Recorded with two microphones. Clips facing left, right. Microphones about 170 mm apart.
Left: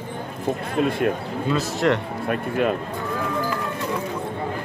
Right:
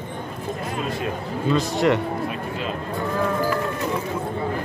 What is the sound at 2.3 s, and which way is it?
Speech, 55° left (ahead or behind).